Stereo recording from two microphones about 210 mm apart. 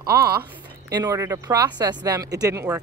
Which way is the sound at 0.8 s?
15° right (ahead or behind).